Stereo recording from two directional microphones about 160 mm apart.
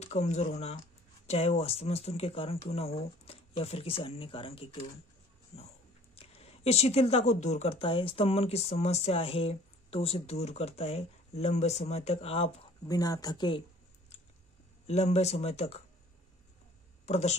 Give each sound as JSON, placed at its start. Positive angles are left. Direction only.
{"t": 0.0, "sound": "speech", "side_deg": 45}
{"t": 6.1, "sound": "speech", "side_deg": 40}
{"t": 12.8, "sound": "speech", "side_deg": 25}
{"t": 14.9, "sound": "speech", "side_deg": 40}
{"t": 17.0, "sound": "speech", "side_deg": 45}